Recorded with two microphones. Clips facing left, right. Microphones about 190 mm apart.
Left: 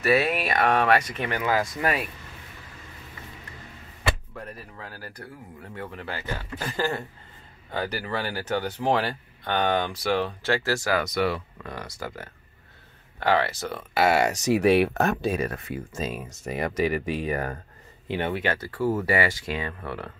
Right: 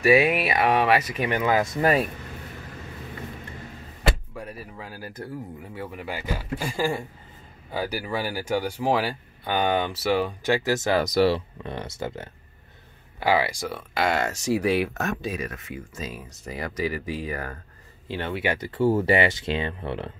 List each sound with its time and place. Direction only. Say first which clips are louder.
0.0 s speech: right 4 dB; 15° right (ahead or behind)
1.3 s speech: right 2 dB; 20° right (ahead or behind)
1.8 s speech: right 5 dB; 35° right (ahead or behind)
4.4 s speech: right 2 dB; 10° right (ahead or behind)
11.0 s speech: right 5 dB; 30° right (ahead or behind)
13.2 s speech: right 1 dB; 10° right (ahead or behind)
13.7 s speech: left 4 dB; 5° left (ahead or behind)
14.5 s speech: left 3 dB; 65° left (ahead or behind)
15.0 s speech: left 5 dB; 30° left (ahead or behind)
16.4 s speech: left 3 dB; 25° left (ahead or behind)
18.4 s speech: right 3 dB; 15° right (ahead or behind)